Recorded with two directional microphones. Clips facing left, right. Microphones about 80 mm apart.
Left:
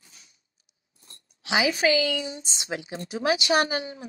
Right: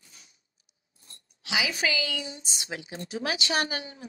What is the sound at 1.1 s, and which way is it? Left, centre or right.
A woman's voice, left.